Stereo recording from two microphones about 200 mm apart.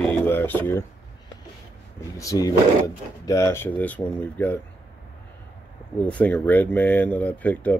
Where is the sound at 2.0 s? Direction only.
15° left (ahead or behind).